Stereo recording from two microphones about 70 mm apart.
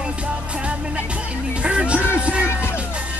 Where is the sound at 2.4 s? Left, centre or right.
Left.